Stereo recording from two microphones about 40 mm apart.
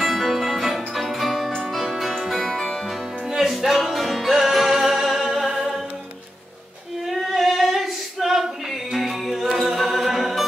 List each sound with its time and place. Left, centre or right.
0.0 s music: centre
7.1 s female singing: centre
8.9 s music: centre